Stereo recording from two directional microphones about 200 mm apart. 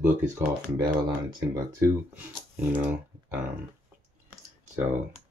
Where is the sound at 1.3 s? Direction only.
15° right (ahead or behind).